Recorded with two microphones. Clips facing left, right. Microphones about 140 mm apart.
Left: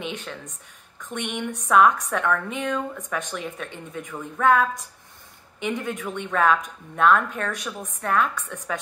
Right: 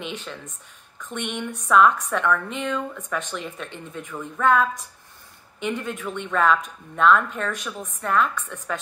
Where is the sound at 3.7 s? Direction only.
10° left (ahead or behind).